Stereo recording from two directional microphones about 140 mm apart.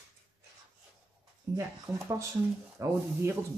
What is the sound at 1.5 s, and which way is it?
Speech, 25° right (ahead or behind).